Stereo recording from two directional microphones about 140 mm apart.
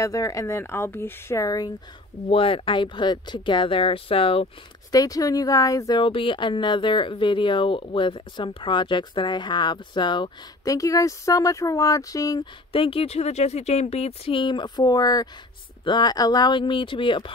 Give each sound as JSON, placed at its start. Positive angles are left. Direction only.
{"t": 0.0, "sound": "a woman's voice", "side_deg": 25}
{"t": 2.2, "sound": "speech", "side_deg": 40}
{"t": 4.9, "sound": "a woman's voice", "side_deg": 25}
{"t": 6.0, "sound": "speech", "side_deg": 35}
{"t": 12.7, "sound": "speech", "side_deg": 40}